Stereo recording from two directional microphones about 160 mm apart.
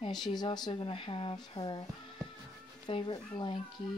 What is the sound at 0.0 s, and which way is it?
Speech, 25° left (ahead or behind).